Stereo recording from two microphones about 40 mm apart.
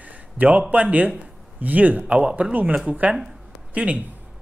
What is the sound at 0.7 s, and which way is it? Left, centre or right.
Speech, right.